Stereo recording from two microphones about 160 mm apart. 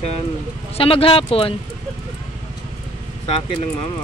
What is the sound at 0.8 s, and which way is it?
Speech, 35° left (ahead or behind).